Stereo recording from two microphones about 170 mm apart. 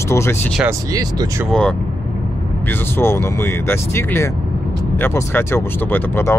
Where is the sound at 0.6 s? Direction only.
20° right (ahead or behind).